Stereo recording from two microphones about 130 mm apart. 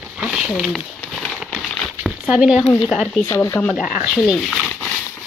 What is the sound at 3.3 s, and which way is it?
Speech, 20° left (ahead or behind).